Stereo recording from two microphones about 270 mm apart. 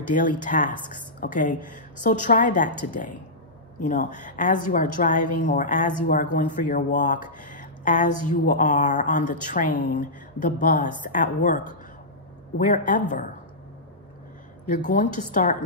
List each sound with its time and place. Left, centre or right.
0.0 s a woman's voice: left
14.7 s a woman's voice: left